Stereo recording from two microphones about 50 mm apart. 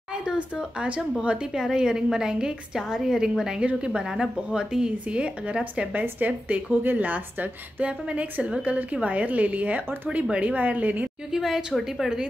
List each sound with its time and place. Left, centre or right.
0.1 s a woman's voice: centre
1.5 s a woman's voice: centre
6.1 s a woman's voice: right
11.3 s a woman's voice: centre